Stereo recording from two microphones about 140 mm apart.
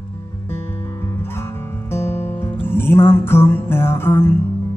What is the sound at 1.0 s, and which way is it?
Music, 20° left (ahead or behind).